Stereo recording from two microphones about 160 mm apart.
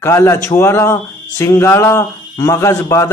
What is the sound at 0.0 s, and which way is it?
A man's voice, 15° left (ahead or behind).